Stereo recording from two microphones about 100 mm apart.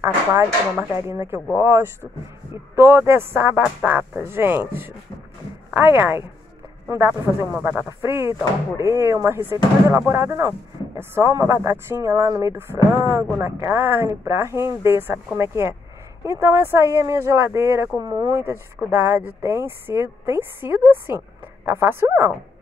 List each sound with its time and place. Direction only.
0.0 s speech: 25° right (ahead or behind)
8.0 s speech: 25° right (ahead or behind)
18.0 s speech: 40° right (ahead or behind)
18.4 s speech: 15° right (ahead or behind)